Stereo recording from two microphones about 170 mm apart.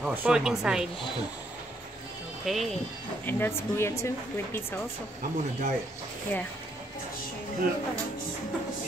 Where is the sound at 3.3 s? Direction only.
15° left (ahead or behind).